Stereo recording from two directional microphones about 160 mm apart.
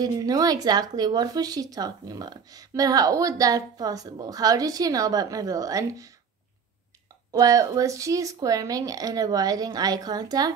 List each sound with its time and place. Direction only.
0.0 s speech: 25° right (ahead or behind)
7.3 s speech: 20° right (ahead or behind)